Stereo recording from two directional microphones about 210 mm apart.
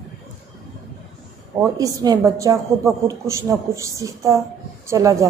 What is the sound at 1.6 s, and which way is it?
A woman's voice, 15° right (ahead or behind).